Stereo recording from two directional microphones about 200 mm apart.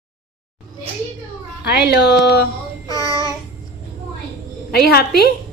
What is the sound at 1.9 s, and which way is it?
Speech, 55° left (ahead or behind).